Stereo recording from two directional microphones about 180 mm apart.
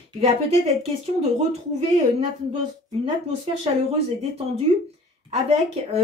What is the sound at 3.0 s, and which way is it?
Speech, 35° right (ahead or behind).